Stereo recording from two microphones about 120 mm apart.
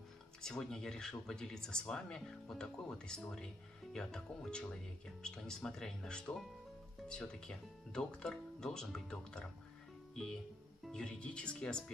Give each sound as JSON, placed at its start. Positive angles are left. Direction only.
{"t": 0.4, "sound": "speech", "side_deg": 5}